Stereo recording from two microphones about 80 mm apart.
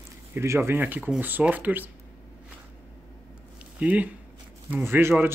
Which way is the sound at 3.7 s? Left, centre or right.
Centre.